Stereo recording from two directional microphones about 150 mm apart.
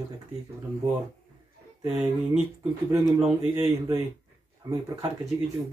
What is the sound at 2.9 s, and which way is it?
Speech, centre (ahead or behind).